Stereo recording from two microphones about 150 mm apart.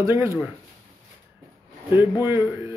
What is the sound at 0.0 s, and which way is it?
Speech, 20° right (ahead or behind).